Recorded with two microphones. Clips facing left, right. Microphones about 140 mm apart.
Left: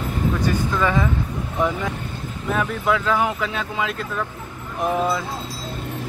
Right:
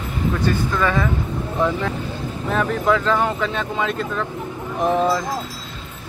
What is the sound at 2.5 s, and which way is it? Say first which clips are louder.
Speech: right 2 dB; 5° left (ahead or behind).